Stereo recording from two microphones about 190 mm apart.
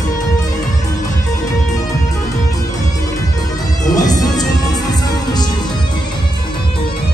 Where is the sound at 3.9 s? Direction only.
20° left (ahead or behind).